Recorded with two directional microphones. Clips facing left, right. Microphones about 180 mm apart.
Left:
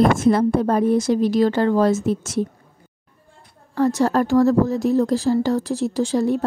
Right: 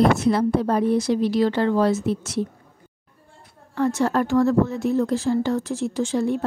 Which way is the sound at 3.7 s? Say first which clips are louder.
Left 3 dB; 35° left (ahead or behind).